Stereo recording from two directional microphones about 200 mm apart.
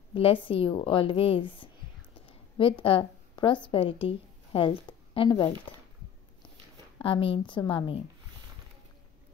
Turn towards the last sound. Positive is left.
turn(degrees=25)  # may be behind; listen again after turning